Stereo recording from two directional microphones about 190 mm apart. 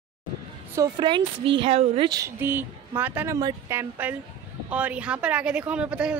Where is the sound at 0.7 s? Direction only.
20° right (ahead or behind).